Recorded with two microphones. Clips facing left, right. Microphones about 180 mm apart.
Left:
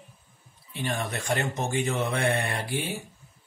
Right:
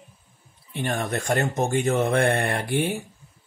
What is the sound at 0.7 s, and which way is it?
Speech, 55° right (ahead or behind).